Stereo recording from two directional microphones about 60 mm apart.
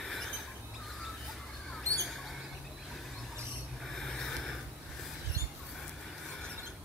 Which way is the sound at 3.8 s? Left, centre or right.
Centre.